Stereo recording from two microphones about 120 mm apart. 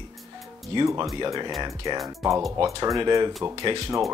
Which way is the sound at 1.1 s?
35° right (ahead or behind).